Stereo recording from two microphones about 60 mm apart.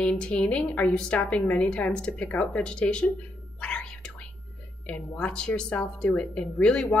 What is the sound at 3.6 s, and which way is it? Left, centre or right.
Whispering, centre.